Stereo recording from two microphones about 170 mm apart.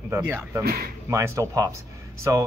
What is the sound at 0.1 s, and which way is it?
Speech, 15° right (ahead or behind).